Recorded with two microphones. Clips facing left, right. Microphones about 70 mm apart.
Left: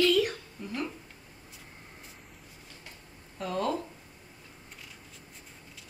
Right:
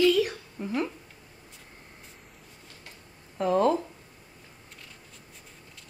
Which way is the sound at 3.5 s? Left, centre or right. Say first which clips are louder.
Right 7 dB; right.